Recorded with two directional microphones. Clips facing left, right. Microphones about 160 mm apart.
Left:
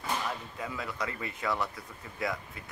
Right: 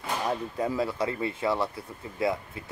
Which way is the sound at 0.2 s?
35° right (ahead or behind).